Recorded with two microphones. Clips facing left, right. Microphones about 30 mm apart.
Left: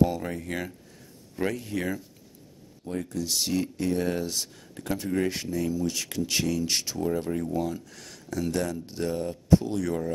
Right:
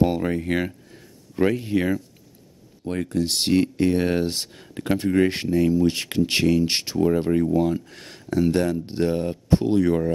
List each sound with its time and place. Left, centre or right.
0.0 s speech: right
2.9 s speech: right